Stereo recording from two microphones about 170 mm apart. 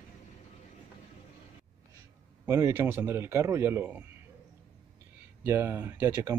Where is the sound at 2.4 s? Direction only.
15° right (ahead or behind).